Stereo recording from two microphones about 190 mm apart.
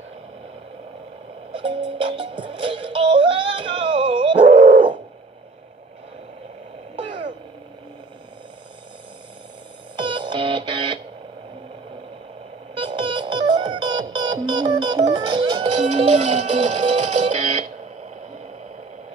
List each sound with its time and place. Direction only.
1.5 s music: 25° right (ahead or behind)
9.9 s music: 25° right (ahead or behind)
12.7 s music: 25° right (ahead or behind)
15.8 s music: 35° right (ahead or behind)